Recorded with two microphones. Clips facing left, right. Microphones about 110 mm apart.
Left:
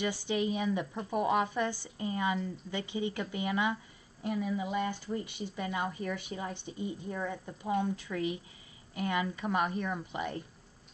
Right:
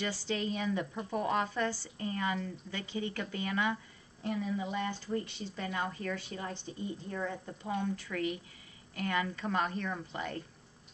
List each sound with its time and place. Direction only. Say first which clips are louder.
0.0 s speech: left 3 dB; 15° left (ahead or behind)